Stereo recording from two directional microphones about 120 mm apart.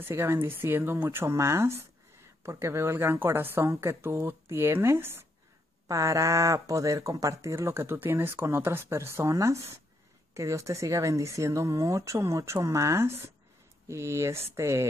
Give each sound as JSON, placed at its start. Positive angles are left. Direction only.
{"t": 0.0, "sound": "speech", "side_deg": -20}